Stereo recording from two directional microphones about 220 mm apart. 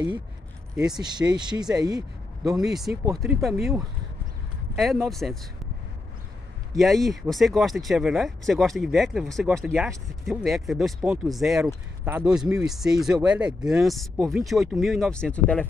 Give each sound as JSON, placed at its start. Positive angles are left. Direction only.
{"t": 1.3, "sound": "speech", "side_deg": -20}
{"t": 2.4, "sound": "speech", "side_deg": 0}
{"t": 6.7, "sound": "speech", "side_deg": 0}